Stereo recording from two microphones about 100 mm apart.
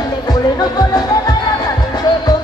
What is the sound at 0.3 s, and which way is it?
Music, 40° left (ahead or behind).